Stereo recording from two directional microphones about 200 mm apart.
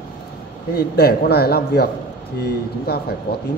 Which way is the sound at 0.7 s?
55° left (ahead or behind).